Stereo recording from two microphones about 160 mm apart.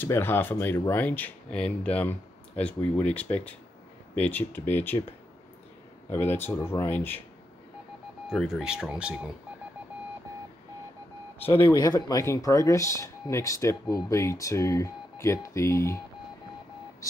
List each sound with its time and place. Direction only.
0.0 s speech: 15° left (ahead or behind)
6.0 s speech: 15° left (ahead or behind)
8.3 s speech: centre (ahead or behind)
11.4 s speech: 15° left (ahead or behind)
11.7 s speech: 25° left (ahead or behind)